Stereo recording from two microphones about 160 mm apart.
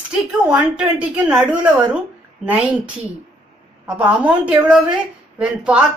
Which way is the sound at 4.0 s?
10° right (ahead or behind).